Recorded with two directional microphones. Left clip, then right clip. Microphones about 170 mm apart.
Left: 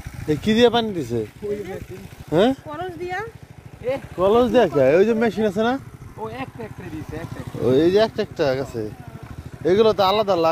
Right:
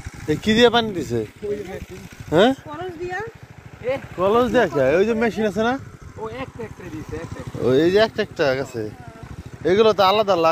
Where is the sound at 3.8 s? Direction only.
25° left (ahead or behind).